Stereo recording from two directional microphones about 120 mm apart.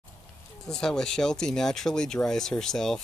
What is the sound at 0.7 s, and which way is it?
Speech, 5° left (ahead or behind).